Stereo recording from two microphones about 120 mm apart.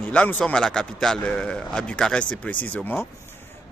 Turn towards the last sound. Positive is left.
turn(degrees=15)  # may be behind; listen again after turning